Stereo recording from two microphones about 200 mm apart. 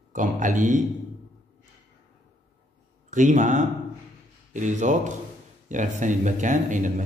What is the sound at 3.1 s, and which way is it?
Speech, 40° right (ahead or behind).